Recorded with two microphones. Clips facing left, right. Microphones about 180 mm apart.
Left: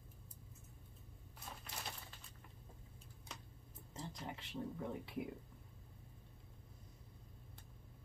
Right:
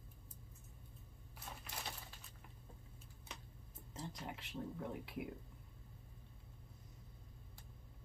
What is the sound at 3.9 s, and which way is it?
Speech, centre (ahead or behind).